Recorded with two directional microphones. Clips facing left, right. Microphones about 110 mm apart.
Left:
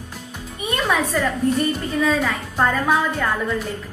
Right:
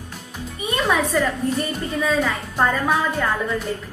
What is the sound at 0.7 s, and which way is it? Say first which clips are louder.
A woman's voice: right 1 dB; centre (ahead or behind).